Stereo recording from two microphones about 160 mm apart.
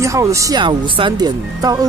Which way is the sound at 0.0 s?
20° right (ahead or behind).